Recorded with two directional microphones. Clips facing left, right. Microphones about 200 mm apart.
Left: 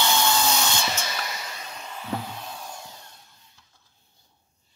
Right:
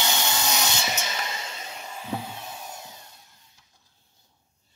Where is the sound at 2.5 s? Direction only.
20° right (ahead or behind).